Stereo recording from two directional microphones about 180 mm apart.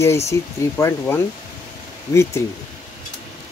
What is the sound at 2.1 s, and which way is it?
Speech, 15° left (ahead or behind).